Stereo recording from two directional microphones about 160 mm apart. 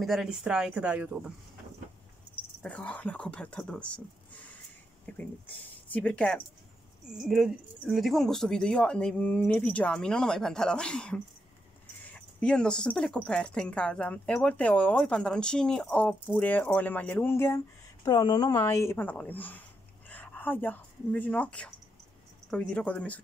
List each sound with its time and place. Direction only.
0.0 s speech: centre (ahead or behind)
2.6 s speech: 5° left (ahead or behind)
18.0 s speech: 25° left (ahead or behind); by 23.2 s 10° left (ahead or behind)